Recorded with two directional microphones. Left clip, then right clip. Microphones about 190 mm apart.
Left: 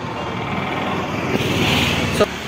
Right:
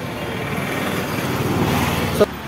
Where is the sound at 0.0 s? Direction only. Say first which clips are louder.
Left 1 dB; 70° right (ahead or behind).